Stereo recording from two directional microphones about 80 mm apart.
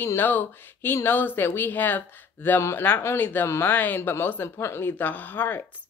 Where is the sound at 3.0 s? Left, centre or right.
Left.